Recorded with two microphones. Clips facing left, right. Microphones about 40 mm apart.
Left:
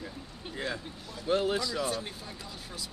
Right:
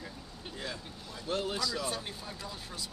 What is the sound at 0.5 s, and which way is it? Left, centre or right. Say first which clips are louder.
Speech: left 6 dB; left.